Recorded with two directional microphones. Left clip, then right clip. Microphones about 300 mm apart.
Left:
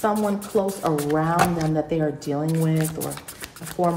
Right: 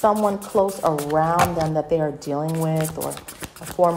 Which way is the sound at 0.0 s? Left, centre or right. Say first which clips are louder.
Right 4 dB; centre.